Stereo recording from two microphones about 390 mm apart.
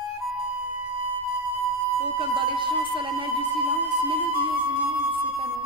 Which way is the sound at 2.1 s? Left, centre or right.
Centre.